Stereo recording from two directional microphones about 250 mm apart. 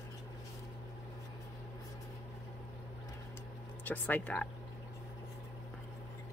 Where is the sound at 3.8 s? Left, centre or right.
Centre.